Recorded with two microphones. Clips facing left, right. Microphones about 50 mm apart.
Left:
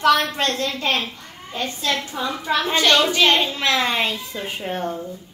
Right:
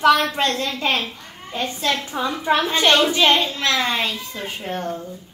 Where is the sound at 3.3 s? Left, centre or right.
Centre.